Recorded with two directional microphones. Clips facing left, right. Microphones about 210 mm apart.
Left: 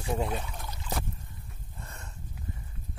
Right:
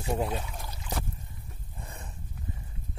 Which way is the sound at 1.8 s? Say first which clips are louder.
Right 2 dB; 15° right (ahead or behind).